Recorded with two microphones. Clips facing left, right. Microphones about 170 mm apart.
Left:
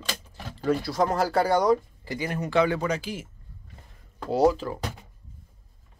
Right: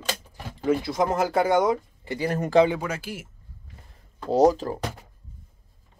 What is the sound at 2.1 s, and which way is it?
Speech, 35° right (ahead or behind).